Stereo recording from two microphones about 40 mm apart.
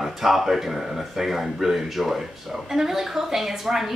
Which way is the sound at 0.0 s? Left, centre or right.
Centre.